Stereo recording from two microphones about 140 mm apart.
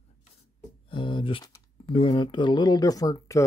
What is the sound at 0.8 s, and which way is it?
Speech, 35° left (ahead or behind).